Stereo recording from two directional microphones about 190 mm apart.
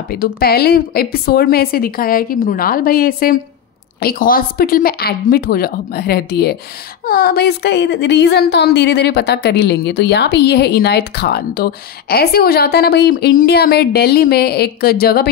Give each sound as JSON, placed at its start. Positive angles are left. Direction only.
{"t": 0.1, "sound": "a woman's voice", "side_deg": 55}